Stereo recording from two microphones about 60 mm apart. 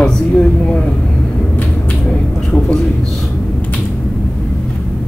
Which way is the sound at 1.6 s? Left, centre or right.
Left.